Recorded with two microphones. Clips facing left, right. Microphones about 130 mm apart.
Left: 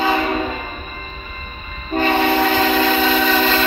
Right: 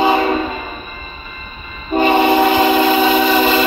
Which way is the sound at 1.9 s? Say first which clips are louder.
Right 4 dB; 15° right (ahead or behind).